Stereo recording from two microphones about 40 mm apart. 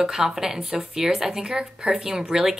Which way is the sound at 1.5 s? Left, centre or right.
Right.